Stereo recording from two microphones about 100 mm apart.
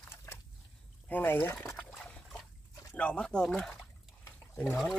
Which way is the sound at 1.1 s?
20° left (ahead or behind).